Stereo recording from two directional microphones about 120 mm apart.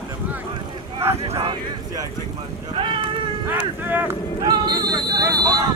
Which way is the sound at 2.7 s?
45° right (ahead or behind).